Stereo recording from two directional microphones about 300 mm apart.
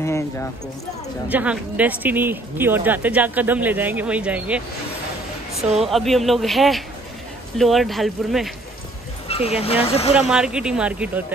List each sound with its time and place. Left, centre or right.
0.0 s speech: centre
1.3 s speech: centre
5.8 s speech: centre
9.3 s speech: centre
10.1 s speech: centre